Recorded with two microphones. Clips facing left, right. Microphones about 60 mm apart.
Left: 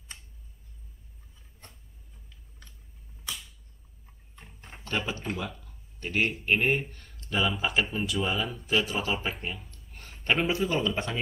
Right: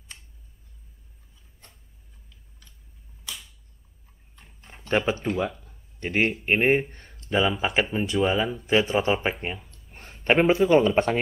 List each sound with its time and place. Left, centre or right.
4.9 s speech: right
5.4 s a sound: right
5.9 s speech: right